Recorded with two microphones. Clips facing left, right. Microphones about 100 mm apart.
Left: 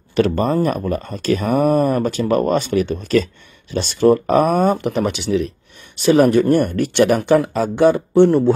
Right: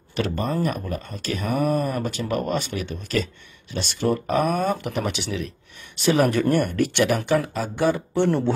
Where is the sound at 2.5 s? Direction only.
60° left (ahead or behind).